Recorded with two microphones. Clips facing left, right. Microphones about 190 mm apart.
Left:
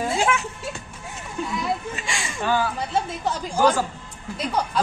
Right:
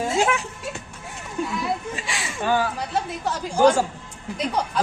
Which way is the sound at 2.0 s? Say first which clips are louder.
Even; 5° right (ahead or behind).